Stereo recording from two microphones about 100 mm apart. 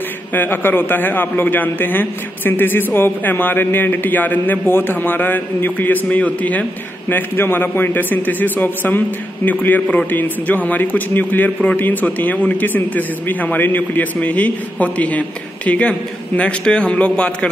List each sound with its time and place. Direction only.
0.3 s a man's voice: 20° left (ahead or behind)